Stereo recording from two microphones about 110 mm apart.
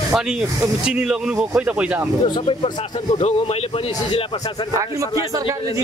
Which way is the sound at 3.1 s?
70° left (ahead or behind).